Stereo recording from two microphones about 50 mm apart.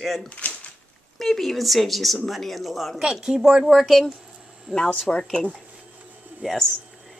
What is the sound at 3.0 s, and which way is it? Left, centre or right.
Speech, centre.